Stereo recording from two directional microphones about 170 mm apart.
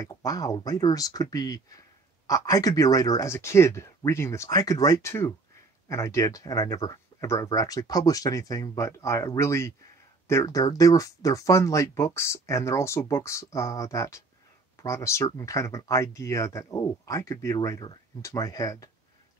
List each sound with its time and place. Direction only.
0.0 s speech: 20° left (ahead or behind)